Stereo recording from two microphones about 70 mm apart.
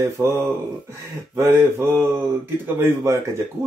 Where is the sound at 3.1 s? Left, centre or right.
Right.